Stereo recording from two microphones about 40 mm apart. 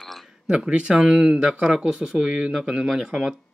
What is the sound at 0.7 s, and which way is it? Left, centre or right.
Speech, right.